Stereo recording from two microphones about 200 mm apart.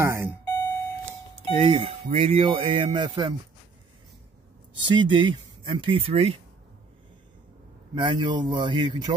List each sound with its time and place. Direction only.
0.0 s doorbell: 10° right (ahead or behind)
0.5 s doorbell: 15° left (ahead or behind)
1.5 s speech: 25° right (ahead or behind)
4.8 s speech: 25° right (ahead or behind)
7.9 s speech: 25° right (ahead or behind)